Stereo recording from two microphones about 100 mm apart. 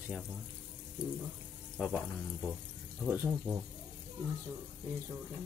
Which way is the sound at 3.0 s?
20° right (ahead or behind).